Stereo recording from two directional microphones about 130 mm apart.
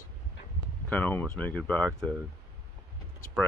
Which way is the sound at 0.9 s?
15° left (ahead or behind).